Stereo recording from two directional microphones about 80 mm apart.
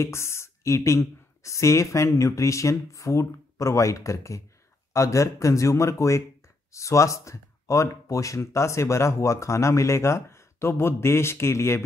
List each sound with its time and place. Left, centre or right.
0.0 s speech: left